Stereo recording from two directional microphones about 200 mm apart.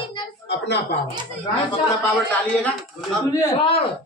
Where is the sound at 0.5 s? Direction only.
55° left (ahead or behind).